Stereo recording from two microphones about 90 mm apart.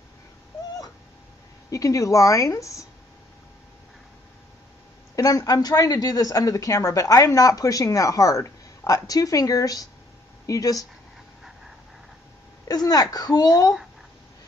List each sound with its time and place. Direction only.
1.7 s speech: 40° left (ahead or behind)
5.1 s speech: 40° left (ahead or behind)
12.6 s a child's voice: 45° left (ahead or behind)